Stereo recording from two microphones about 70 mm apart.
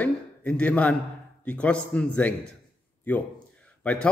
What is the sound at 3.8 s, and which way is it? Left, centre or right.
Speech, centre.